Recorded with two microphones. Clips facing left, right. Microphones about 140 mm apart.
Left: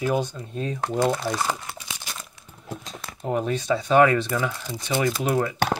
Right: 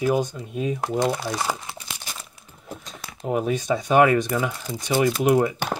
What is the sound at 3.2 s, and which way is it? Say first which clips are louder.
Speech: right 1 dB; 10° right (ahead or behind).